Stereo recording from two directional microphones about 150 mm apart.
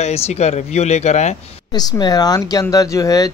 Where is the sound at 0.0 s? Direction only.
45° left (ahead or behind).